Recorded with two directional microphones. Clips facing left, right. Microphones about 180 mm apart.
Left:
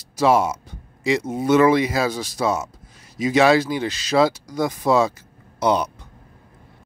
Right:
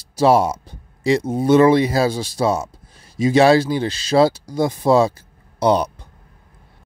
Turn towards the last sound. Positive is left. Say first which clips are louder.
# right 3 dB
turn(degrees=-35)  # may be behind; listen again after turning